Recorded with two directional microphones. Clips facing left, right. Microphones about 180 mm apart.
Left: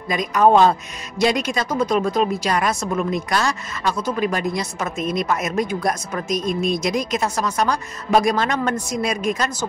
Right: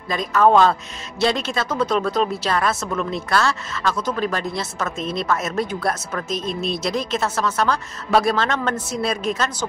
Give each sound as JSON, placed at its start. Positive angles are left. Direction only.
{"t": 0.1, "sound": "a woman's voice", "side_deg": 15}